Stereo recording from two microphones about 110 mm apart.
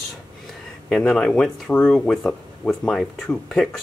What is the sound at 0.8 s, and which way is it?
Speech, 5° left (ahead or behind).